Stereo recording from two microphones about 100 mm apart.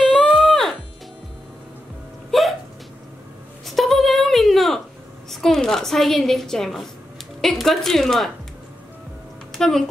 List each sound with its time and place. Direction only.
0.2 s music: 5° left (ahead or behind)
3.6 s a sound: centre (ahead or behind)
5.3 s a woman's voice: 5° left (ahead or behind)
9.5 s speech: 5° left (ahead or behind)